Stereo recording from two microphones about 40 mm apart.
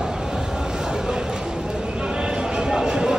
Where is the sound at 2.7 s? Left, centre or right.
Centre.